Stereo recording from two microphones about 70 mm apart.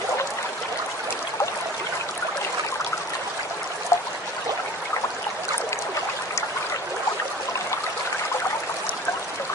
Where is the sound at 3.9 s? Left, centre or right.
Left.